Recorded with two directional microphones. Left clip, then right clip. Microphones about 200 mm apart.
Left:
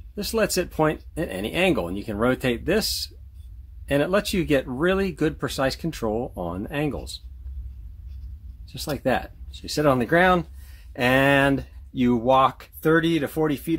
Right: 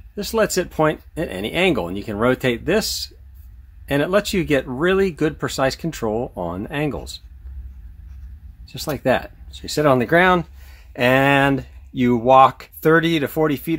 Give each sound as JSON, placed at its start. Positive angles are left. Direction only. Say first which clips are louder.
{"t": 0.1, "sound": "speech", "louder": "right 4 dB", "side_deg": -5}
{"t": 8.7, "sound": "speech", "louder": "right 5 dB", "side_deg": -10}